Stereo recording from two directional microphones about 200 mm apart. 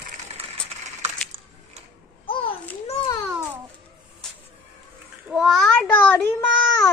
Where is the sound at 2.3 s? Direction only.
25° left (ahead or behind).